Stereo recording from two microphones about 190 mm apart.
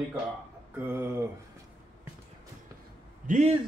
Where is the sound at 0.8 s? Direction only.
10° right (ahead or behind).